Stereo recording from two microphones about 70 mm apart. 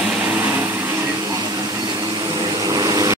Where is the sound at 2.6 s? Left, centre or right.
Right.